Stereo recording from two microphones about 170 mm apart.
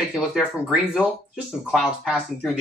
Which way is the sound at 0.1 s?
5° left (ahead or behind).